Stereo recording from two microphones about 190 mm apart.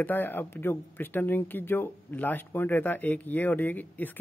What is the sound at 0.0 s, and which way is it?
A man's voice, 10° left (ahead or behind).